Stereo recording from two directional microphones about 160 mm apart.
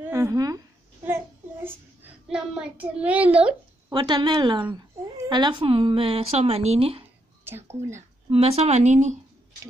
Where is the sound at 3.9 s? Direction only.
25° right (ahead or behind).